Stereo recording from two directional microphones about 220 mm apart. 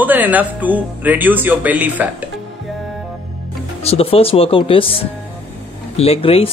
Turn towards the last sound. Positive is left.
turn(degrees=25)  # may be behind; listen again after turning